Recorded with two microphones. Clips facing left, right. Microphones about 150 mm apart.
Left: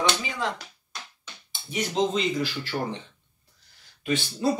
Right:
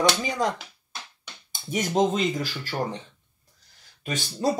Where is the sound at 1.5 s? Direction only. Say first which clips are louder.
Right 4 dB; 45° right (ahead or behind).